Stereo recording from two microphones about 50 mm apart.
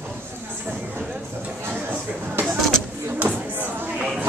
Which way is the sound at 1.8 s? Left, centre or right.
Right.